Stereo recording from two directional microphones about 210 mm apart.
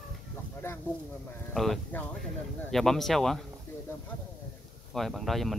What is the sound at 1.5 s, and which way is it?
Speech, centre (ahead or behind).